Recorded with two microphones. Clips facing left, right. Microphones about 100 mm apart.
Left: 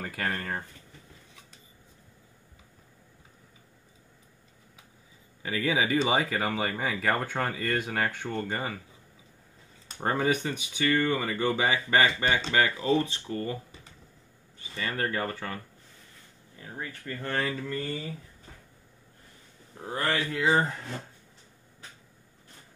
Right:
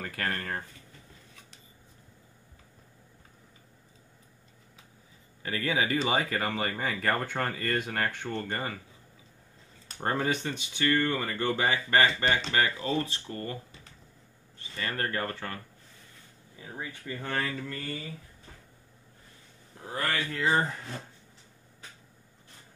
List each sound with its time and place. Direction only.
0.0 s speech: 10° left (ahead or behind)
5.4 s speech: 15° left (ahead or behind)
9.8 s speech: 5° left (ahead or behind)
14.7 s speech: 5° left (ahead or behind)
16.5 s speech: 10° right (ahead or behind)
17.4 s speech: centre (ahead or behind)
20.1 s speech: 15° left (ahead or behind)